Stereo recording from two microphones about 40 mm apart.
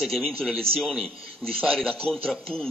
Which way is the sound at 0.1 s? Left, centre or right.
Centre.